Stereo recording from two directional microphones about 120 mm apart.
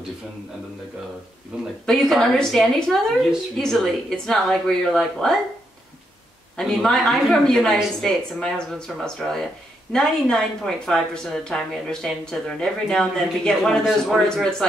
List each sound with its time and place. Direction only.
1.5 s speech: 10° right (ahead or behind)
1.9 s speech: 5° left (ahead or behind)
6.5 s speech: 5° left (ahead or behind)